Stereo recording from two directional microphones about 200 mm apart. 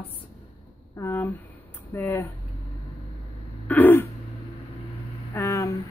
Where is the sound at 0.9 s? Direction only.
10° left (ahead or behind).